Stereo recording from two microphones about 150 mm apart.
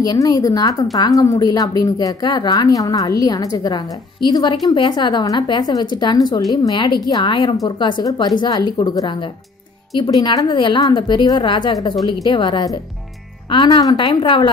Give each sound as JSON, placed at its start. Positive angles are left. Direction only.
{"t": 0.0, "sound": "a woman's voice", "side_deg": 25}